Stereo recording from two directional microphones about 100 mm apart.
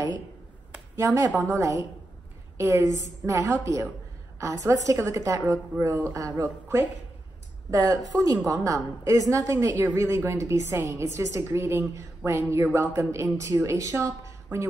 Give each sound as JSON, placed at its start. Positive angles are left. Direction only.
{"t": 0.9, "sound": "a woman's voice", "side_deg": -35}
{"t": 7.7, "sound": "a woman's voice", "side_deg": -40}